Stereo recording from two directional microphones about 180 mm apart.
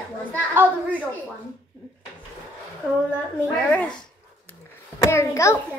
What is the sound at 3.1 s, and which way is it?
Speech, 10° left (ahead or behind).